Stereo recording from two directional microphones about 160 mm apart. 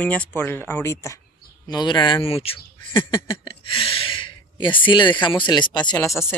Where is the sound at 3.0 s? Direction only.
30° left (ahead or behind).